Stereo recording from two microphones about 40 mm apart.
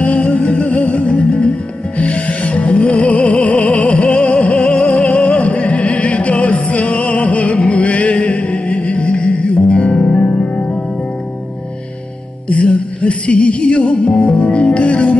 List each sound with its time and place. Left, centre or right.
0.0 s music: left
12.4 s music: left